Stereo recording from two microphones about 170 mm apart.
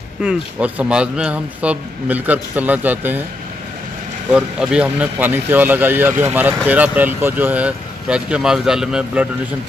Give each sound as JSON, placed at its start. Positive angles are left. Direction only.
{"t": 0.2, "sound": "speech", "side_deg": -5}
{"t": 4.3, "sound": "speech", "side_deg": -5}